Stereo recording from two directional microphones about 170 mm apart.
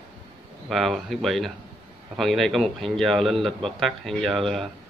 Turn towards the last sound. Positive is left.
turn(degrees=0)  # may be behind; listen again after turning